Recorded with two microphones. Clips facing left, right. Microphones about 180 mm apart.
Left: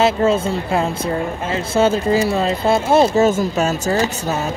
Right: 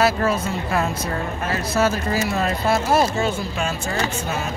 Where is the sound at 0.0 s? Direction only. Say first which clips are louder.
Left 4 dB; 25° left (ahead or behind).